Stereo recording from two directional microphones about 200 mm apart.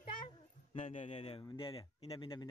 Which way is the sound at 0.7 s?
40° left (ahead or behind).